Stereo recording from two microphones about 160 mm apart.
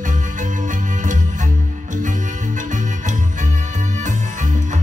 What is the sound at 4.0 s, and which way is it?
Music, 50° right (ahead or behind).